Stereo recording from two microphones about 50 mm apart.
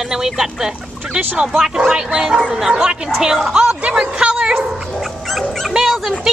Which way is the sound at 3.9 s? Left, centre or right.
Centre.